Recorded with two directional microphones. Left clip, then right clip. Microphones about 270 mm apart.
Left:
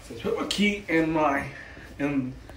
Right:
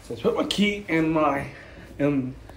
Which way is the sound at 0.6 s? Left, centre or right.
Centre.